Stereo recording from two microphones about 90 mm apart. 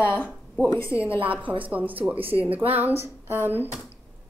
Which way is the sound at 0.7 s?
30° left (ahead or behind).